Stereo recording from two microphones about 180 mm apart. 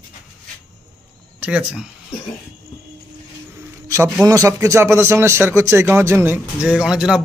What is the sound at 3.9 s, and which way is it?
A man's voice, 15° right (ahead or behind).